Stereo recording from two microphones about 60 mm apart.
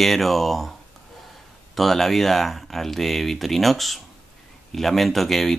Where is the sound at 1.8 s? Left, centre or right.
Centre.